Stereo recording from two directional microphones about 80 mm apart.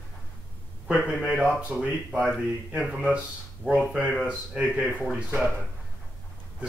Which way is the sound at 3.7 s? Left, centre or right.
Centre.